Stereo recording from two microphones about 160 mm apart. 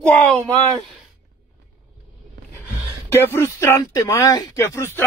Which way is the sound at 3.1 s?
15° left (ahead or behind).